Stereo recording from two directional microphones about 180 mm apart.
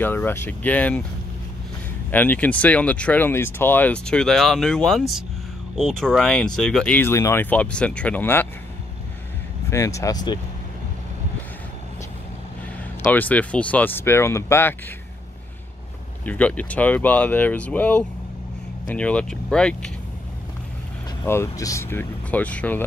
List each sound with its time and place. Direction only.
0.0 s speech: 10° left (ahead or behind)
2.0 s speech: 10° left (ahead or behind)
9.7 s speech: 15° left (ahead or behind)
13.1 s speech: 10° left (ahead or behind)
16.3 s speech: 10° left (ahead or behind)
21.2 s speech: 15° left (ahead or behind)